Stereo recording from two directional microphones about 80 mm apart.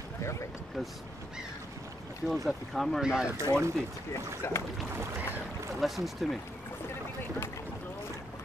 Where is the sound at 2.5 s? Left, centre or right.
Centre.